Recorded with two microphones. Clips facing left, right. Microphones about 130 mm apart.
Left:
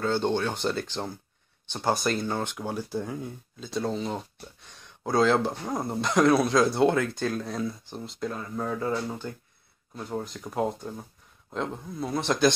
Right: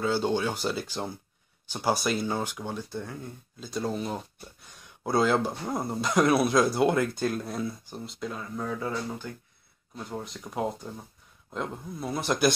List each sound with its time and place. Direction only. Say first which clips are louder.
0.0 s speech: left 1 dB; 10° right (ahead or behind)
2.5 s speech: left 3 dB; 5° left (ahead or behind)
6.2 s speech: left 2 dB; 15° right (ahead or behind)
9.9 s speech: left 3 dB; centre (ahead or behind)